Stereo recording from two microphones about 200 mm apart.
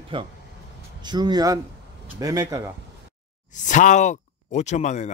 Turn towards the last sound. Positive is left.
turn(degrees=35)  # may be behind; listen again after turning